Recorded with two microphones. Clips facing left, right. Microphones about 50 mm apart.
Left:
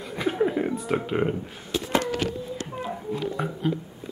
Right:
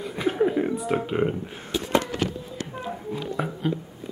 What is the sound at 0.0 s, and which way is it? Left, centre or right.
Chuckle, centre.